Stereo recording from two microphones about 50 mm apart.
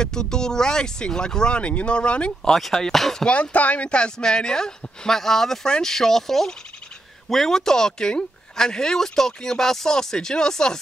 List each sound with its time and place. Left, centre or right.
0.0 s speech: centre
2.5 s speech: centre
3.3 s speech: left; by 10.8 s centre